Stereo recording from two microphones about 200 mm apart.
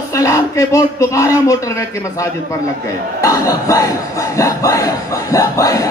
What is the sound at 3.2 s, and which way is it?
Crowd, 15° left (ahead or behind).